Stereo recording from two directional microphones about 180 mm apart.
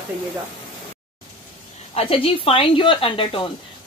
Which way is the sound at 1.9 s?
30° left (ahead or behind).